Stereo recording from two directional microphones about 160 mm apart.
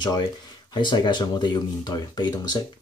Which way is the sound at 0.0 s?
25° left (ahead or behind).